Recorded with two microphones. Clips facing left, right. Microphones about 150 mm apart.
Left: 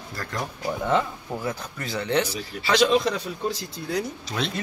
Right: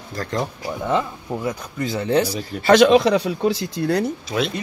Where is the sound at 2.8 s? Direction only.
75° right (ahead or behind).